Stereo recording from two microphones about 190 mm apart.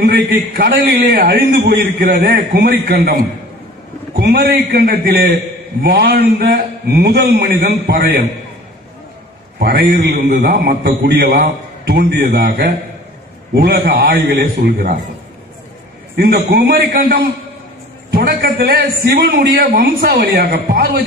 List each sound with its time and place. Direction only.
0.0 s a man's voice: 55° right (ahead or behind)
9.6 s a man's voice: 50° right (ahead or behind)
16.2 s a man's voice: 50° right (ahead or behind)